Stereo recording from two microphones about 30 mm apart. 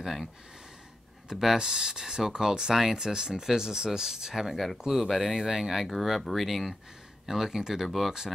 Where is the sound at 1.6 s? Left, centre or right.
Right.